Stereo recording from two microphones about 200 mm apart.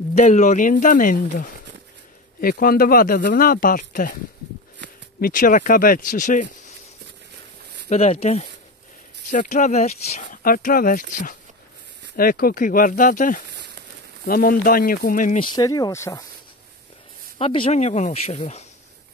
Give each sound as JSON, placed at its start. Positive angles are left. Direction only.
{"t": 0.1, "sound": "speech", "side_deg": 35}
{"t": 5.2, "sound": "speech", "side_deg": 45}
{"t": 7.9, "sound": "speech", "side_deg": 30}
{"t": 15.3, "sound": "speech", "side_deg": 20}
{"t": 17.4, "sound": "speech", "side_deg": 30}